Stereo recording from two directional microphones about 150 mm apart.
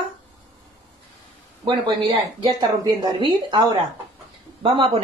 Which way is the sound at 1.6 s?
30° right (ahead or behind).